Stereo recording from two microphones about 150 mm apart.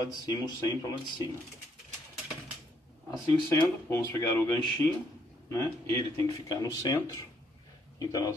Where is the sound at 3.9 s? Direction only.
20° left (ahead or behind).